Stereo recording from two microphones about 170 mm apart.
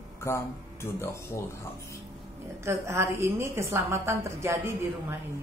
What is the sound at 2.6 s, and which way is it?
A woman's voice, 15° right (ahead or behind).